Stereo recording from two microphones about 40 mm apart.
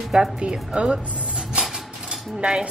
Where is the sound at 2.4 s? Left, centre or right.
Right.